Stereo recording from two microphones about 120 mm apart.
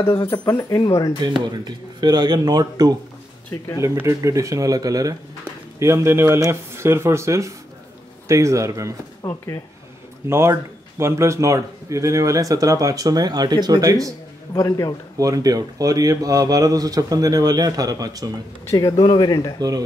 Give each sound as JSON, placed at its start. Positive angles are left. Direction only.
{"t": 0.6, "sound": "speech", "side_deg": 30}
{"t": 1.4, "sound": "speech", "side_deg": -35}
{"t": 3.8, "sound": "a man's voice", "side_deg": -25}
{"t": 9.2, "sound": "speech", "side_deg": 25}
{"t": 10.3, "sound": "a man's voice", "side_deg": -20}
{"t": 14.5, "sound": "speech", "side_deg": 30}
{"t": 15.1, "sound": "speech", "side_deg": -30}
{"t": 18.7, "sound": "speech", "side_deg": 30}